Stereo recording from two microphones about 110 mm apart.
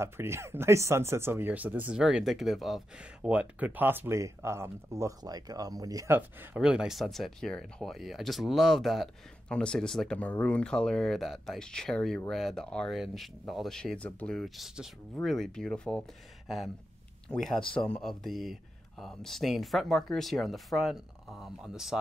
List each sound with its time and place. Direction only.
0.0 s speech: 25° right (ahead or behind)
6.1 s speech: 20° right (ahead or behind)
6.6 s speech: 5° right (ahead or behind)